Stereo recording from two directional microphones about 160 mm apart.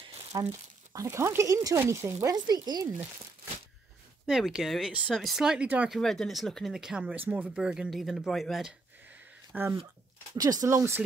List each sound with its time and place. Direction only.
0.3 s speech: 20° right (ahead or behind)
4.3 s speech: 5° right (ahead or behind)
5.9 s speech: centre (ahead or behind)
10.3 s speech: 20° right (ahead or behind)